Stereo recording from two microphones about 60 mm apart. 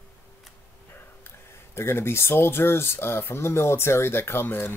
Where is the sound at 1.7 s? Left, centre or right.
Left.